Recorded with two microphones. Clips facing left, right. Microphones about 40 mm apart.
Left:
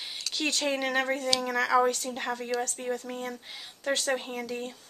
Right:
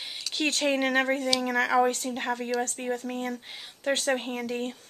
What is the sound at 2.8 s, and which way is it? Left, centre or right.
Speech, right.